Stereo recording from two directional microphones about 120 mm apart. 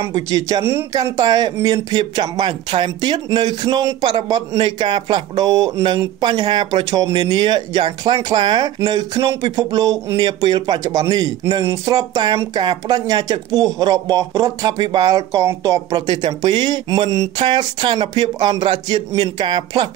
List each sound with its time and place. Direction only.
0.0 s a man's voice: 30° right (ahead or behind)
7.1 s a man's voice: 40° right (ahead or behind)
16.1 s a man's voice: 40° right (ahead or behind)